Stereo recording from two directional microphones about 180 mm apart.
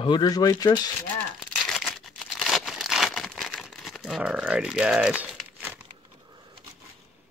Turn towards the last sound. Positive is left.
turn(degrees=-5)  # may be behind; listen again after turning